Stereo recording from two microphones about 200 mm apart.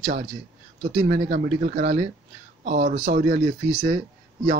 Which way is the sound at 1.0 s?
50° right (ahead or behind).